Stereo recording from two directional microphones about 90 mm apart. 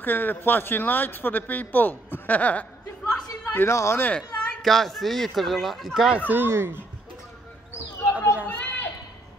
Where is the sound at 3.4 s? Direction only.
25° left (ahead or behind).